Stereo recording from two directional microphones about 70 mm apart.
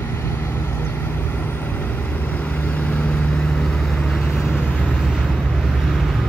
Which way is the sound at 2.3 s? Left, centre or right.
Left.